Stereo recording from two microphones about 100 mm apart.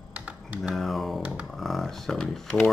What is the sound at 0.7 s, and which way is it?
Speech, centre (ahead or behind).